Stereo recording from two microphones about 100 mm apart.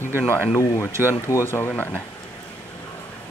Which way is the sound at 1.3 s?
25° left (ahead or behind).